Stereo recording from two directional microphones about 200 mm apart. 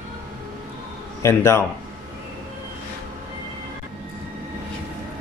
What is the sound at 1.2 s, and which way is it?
Speech, 15° left (ahead or behind).